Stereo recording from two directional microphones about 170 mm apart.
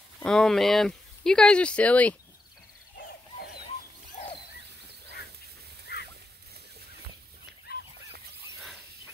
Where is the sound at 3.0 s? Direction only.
75° left (ahead or behind).